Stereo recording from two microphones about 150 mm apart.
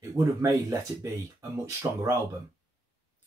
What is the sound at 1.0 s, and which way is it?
Speech, 20° right (ahead or behind).